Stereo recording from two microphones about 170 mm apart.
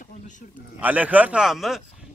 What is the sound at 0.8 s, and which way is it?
Speech, 10° right (ahead or behind).